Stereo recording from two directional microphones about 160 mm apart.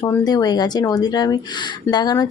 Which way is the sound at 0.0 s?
25° left (ahead or behind).